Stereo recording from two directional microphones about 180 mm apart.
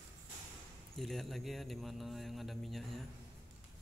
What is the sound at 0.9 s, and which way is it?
Speech, centre (ahead or behind).